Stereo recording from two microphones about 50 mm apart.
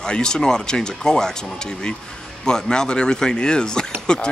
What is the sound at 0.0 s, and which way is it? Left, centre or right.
Speech, centre.